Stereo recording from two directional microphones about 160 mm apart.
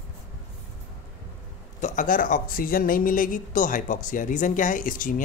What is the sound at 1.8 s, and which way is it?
Speech, 55° left (ahead or behind).